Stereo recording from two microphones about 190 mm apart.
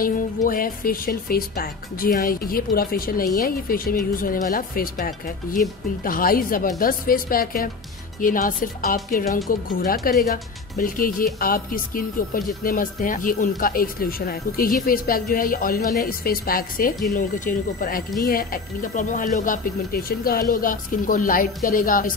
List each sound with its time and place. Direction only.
0.0 s a woman's voice: 50° left (ahead or behind)